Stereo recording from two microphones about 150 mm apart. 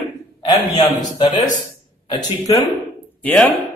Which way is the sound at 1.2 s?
50° left (ahead or behind).